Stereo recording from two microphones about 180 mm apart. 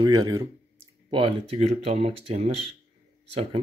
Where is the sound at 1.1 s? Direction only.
30° right (ahead or behind).